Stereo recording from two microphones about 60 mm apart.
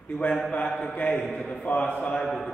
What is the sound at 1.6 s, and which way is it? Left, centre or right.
Speech, left.